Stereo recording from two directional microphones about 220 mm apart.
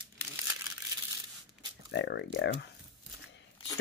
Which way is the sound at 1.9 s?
50° left (ahead or behind).